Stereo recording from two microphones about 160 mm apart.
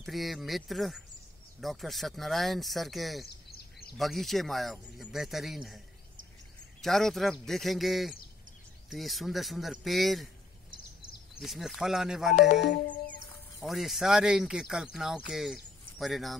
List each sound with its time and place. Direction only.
0.0 s speech: centre (ahead or behind)
6.8 s speech: centre (ahead or behind)
11.4 s speech: centre (ahead or behind)
12.7 s music: 55° left (ahead or behind)
13.6 s speech: centre (ahead or behind)